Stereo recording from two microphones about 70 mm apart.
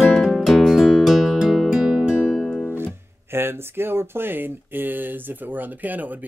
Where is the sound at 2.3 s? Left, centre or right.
Centre.